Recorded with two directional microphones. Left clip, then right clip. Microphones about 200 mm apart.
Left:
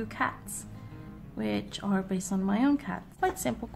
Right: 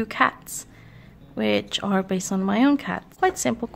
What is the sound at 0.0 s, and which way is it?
Speech, 40° right (ahead or behind).